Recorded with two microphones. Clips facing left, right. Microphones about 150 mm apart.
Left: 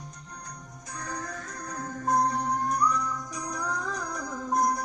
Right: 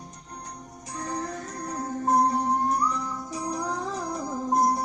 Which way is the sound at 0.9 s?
30° right (ahead or behind).